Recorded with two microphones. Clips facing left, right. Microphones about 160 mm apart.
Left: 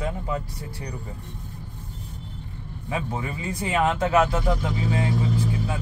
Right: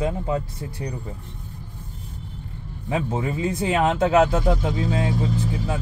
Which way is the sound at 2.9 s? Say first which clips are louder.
Right 5 dB; 25° right (ahead or behind).